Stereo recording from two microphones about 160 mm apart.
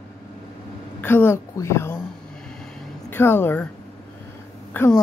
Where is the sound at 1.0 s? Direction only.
15° left (ahead or behind).